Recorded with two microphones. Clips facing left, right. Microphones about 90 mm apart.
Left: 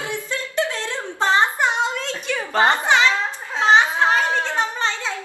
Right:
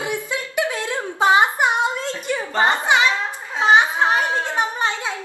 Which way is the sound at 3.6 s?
15° right (ahead or behind).